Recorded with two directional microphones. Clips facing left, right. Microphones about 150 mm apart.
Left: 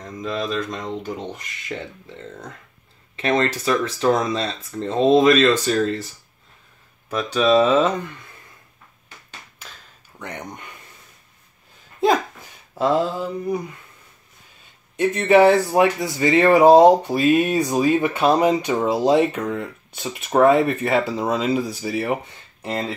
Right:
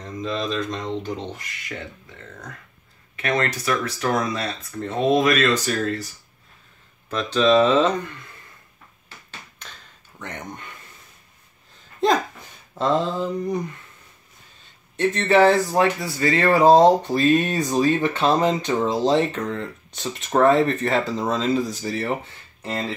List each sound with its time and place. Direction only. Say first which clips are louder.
0.0 s speech: even; 5° left (ahead or behind)
3.2 s speech: left 3 dB; 25° left (ahead or behind)
7.1 s speech: even; 10° left (ahead or behind)
9.6 s a sound: even; 10° left (ahead or behind)
12.0 s speech: left 1 dB; 5° left (ahead or behind)
15.0 s speech: left 2 dB; 10° left (ahead or behind)